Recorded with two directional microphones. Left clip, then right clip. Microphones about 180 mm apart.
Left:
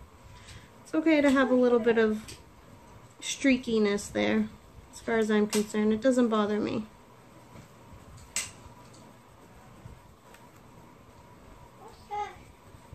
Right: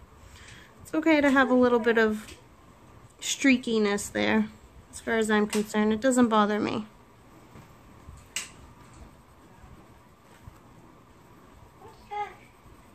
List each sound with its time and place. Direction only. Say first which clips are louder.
0.9 s speech: right 2 dB; 60° right (ahead or behind)
3.3 s speech: right 2 dB; 60° right (ahead or behind)